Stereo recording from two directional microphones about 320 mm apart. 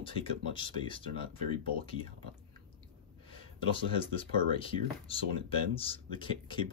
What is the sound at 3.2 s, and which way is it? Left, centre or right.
Speech, centre.